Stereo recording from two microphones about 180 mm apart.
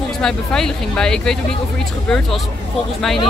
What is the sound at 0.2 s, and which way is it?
Speech, 5° left (ahead or behind).